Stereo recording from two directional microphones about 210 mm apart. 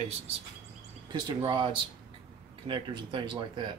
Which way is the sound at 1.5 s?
20° right (ahead or behind).